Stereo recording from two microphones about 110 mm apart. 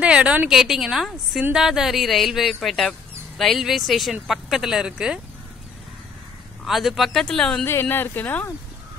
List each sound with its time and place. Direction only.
0.0 s speech: 10° right (ahead or behind)
6.6 s speech: centre (ahead or behind)
7.6 s speech: 20° left (ahead or behind)